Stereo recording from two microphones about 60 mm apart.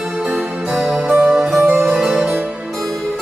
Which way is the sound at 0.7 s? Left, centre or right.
Centre.